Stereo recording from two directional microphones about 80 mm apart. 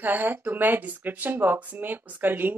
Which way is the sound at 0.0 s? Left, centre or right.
Right.